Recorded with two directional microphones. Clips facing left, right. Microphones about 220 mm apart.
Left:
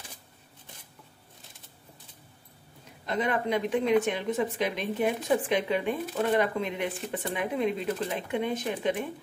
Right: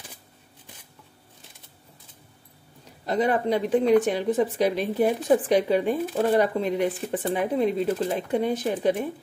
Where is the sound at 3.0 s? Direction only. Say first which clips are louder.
Right 5 dB; 35° right (ahead or behind).